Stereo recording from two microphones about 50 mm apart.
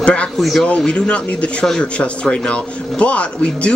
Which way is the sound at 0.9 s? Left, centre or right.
Left.